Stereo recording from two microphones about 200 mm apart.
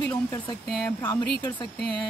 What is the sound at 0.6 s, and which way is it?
Speech, 5° left (ahead or behind).